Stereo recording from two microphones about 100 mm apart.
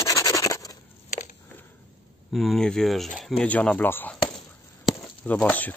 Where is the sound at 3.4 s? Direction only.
10° left (ahead or behind).